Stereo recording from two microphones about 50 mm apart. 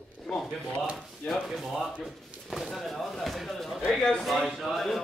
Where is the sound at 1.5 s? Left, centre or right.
Centre.